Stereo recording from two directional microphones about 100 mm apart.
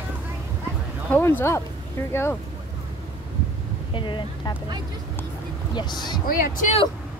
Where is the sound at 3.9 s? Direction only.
55° left (ahead or behind).